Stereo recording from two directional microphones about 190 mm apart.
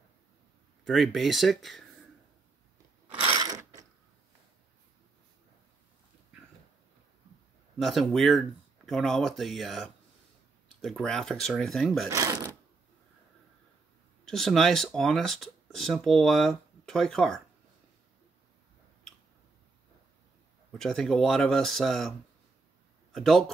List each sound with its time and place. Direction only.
0.8 s speech: centre (ahead or behind)
3.3 s mechanisms: 20° right (ahead or behind)
7.8 s speech: centre (ahead or behind)
12.1 s sewing machine: 15° right (ahead or behind)
14.2 s speech: centre (ahead or behind)
20.7 s speech: centre (ahead or behind)
23.1 s speech: centre (ahead or behind)